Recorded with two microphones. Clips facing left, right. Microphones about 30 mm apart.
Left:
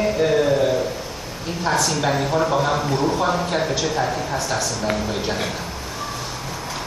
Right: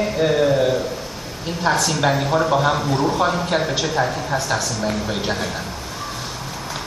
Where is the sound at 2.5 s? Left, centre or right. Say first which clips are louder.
Right 2 dB; centre.